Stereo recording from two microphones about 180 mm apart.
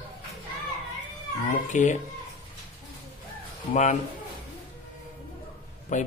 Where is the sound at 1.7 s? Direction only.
40° left (ahead or behind).